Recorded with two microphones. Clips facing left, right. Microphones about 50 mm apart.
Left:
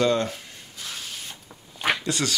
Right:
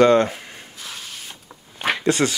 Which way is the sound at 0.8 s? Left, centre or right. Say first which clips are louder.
Even; centre.